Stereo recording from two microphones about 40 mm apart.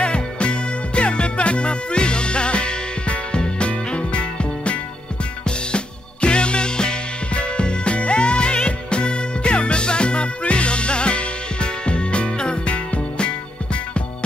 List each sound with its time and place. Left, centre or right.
0.0 s music: left
6.2 s music: left